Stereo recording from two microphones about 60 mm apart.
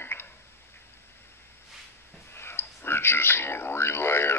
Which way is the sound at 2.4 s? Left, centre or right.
Left.